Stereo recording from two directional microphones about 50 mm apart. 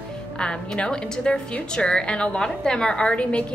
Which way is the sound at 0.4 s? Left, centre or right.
Centre.